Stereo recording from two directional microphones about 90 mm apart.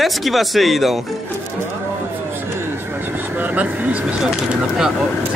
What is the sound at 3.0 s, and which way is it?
Vehicle, 20° right (ahead or behind).